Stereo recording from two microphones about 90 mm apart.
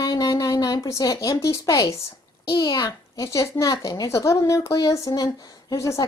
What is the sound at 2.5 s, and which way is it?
A child's voice, 50° left (ahead or behind).